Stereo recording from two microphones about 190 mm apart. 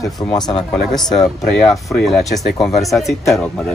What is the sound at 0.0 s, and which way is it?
Speech, 20° left (ahead or behind).